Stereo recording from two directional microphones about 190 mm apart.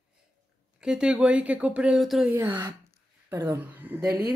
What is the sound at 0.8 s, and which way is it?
Speech, 5° right (ahead or behind).